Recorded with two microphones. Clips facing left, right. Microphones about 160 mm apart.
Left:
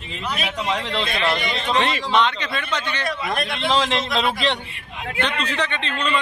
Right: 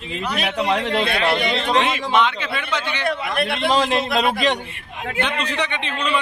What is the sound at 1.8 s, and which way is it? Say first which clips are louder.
A man's voice: left 3 dB; 10° right (ahead or behind).